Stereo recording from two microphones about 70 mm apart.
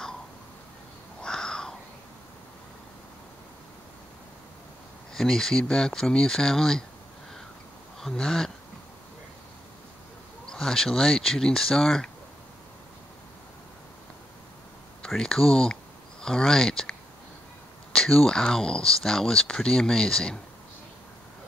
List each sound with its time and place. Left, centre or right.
1.2 s a sound: centre
5.1 s speech: centre
8.0 s speech: centre
10.4 s speech: centre
15.0 s speech: centre
17.9 s speech: centre